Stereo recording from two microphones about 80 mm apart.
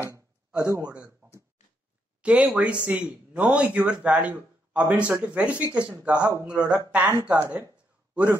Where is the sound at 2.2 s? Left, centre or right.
Centre.